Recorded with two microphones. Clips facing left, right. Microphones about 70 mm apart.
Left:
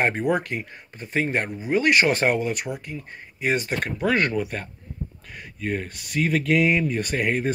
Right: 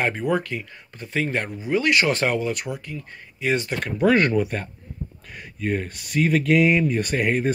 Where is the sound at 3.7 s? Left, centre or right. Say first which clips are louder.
Left 1 dB; left.